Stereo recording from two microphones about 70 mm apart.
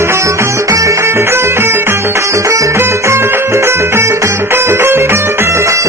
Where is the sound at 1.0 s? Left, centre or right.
Right.